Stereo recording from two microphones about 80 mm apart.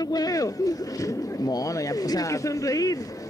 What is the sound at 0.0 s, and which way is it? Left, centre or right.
Speech, left.